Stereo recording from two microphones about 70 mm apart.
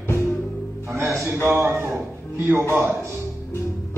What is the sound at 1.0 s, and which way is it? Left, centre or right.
Speech, right.